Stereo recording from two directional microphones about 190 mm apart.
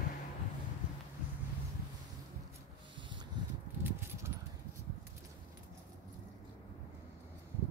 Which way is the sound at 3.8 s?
10° right (ahead or behind).